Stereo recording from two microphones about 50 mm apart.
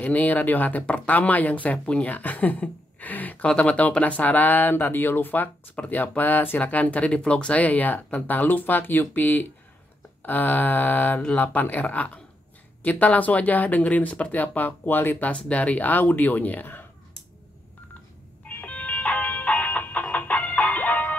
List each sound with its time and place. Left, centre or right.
0.0 s speech: left
3.4 s speech: left
18.5 s music: left